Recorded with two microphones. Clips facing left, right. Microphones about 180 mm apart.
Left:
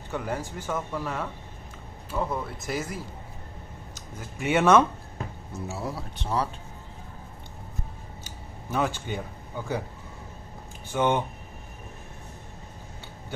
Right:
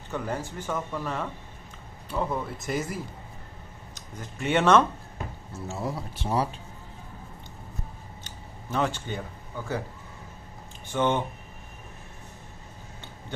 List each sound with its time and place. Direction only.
0.1 s speech: 10° left (ahead or behind)
4.2 s speech: 10° left (ahead or behind)
6.2 s speech: 10° right (ahead or behind)
8.2 s a sound: 10° left (ahead or behind)
10.9 s speech: 10° left (ahead or behind)